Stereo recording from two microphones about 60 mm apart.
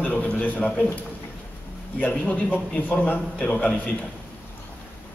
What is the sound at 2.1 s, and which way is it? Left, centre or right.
A man's voice, left.